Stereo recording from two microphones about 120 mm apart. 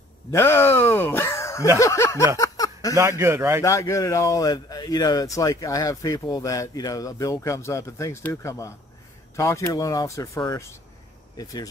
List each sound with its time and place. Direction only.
0.3 s speech: 20° left (ahead or behind)
2.3 s a sound: 30° left (ahead or behind)
3.0 s a man's voice: 20° right (ahead or behind)
3.6 s speech: 25° left (ahead or behind)